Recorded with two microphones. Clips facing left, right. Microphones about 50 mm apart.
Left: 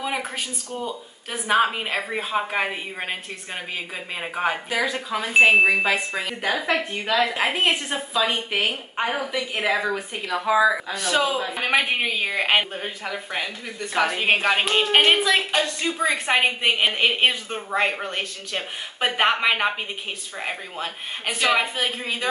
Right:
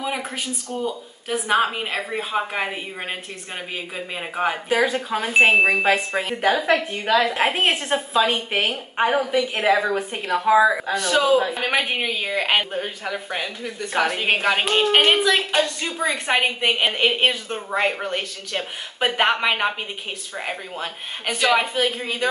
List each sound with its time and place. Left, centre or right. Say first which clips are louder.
0.0 s a sound: even; centre
0.8 s a woman's voice: right 4 dB; centre
4.6 s a woman's voice: right 4 dB; right
5.3 s a woman's voice: even; centre
5.9 s a woman's voice: right 3 dB; right
6.5 s a woman's voice: right 1 dB; centre
7.2 s a woman's voice: right 2 dB; right
11.0 s a man's voice: right 4 dB; centre